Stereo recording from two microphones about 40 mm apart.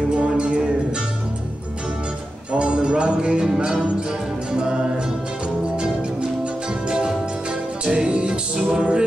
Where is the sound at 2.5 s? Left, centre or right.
Right.